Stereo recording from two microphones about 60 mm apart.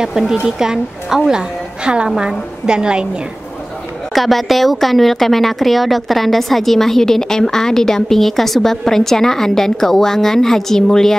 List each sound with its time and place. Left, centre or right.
0.5 s a woman's voice: centre
4.1 s a woman's voice: centre